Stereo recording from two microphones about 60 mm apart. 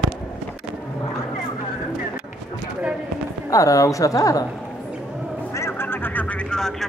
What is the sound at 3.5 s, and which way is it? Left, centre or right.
Speech, left.